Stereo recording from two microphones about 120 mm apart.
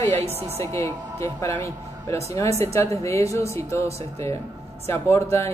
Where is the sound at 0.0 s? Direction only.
25° left (ahead or behind).